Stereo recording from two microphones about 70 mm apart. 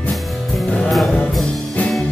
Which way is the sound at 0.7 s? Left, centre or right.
Centre.